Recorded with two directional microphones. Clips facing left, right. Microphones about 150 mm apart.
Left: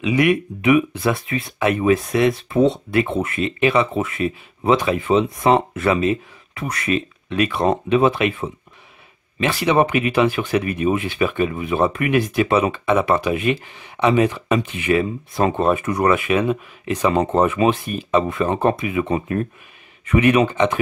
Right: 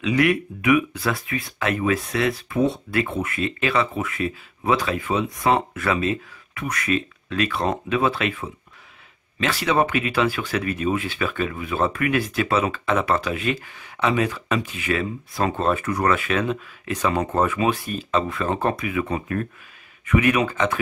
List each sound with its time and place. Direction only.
0.0 s speech: 15° left (ahead or behind)